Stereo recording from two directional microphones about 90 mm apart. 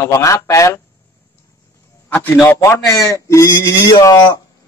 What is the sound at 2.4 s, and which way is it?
A man's voice, 25° left (ahead or behind).